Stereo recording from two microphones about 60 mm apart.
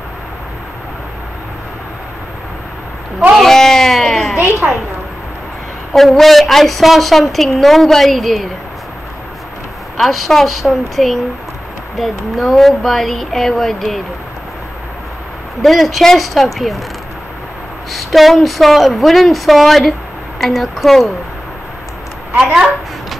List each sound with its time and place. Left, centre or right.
3.3 s a sound: centre
4.4 s a woman's voice: right
5.9 s a woman's voice: centre
9.9 s a woman's voice: centre
15.6 s a woman's voice: centre
17.9 s a woman's voice: centre
22.4 s a sound: centre